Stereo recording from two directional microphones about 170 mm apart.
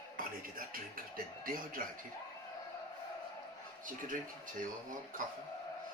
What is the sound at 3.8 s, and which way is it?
Speech, 50° right (ahead or behind).